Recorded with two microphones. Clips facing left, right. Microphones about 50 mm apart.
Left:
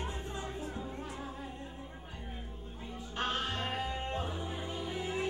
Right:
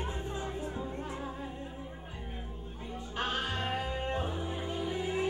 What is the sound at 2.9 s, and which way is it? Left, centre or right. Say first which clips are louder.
Music: right 1 dB; centre.